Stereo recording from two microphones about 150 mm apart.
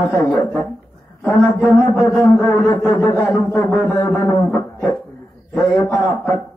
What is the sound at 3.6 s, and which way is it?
Music, 10° left (ahead or behind).